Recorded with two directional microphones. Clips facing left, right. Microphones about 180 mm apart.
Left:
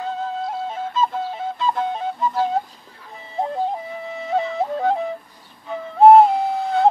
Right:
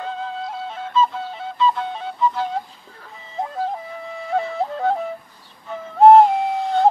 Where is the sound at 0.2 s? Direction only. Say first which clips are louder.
Left 3 dB; 45° left (ahead or behind).